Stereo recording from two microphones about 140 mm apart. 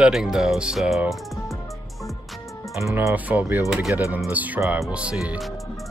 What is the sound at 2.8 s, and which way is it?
Speech, 20° right (ahead or behind).